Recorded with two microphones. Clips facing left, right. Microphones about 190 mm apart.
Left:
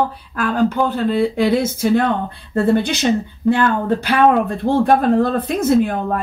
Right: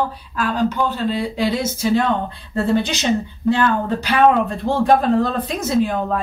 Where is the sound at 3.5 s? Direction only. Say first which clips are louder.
Left 2 dB; 50° left (ahead or behind).